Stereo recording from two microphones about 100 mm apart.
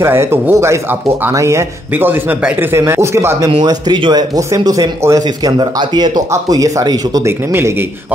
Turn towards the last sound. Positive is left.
turn(degrees=-25)  # may be behind; listen again after turning